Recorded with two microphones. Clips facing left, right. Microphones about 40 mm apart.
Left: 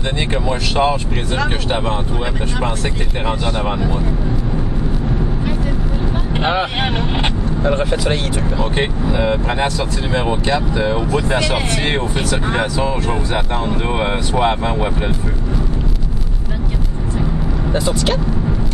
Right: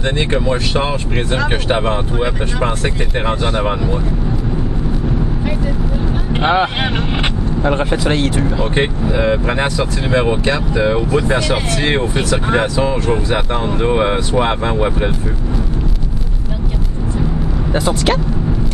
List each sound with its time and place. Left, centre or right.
0.5 s speech: centre
3.3 s speech: centre
6.4 s speech: right
7.7 s speech: centre
8.0 s speech: right
8.4 s speech: centre
9.6 s speech: right
12.4 s speech: centre
13.7 s speech: centre
17.7 s speech: right